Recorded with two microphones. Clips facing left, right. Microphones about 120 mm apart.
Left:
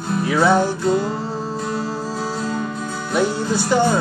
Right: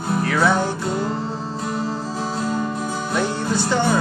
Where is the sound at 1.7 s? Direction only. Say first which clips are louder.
Left 1 dB; 15° right (ahead or behind).